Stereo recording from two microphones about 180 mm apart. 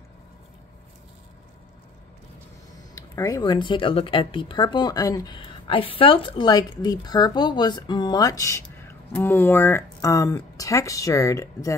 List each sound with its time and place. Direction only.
2.9 s speech: 20° left (ahead or behind)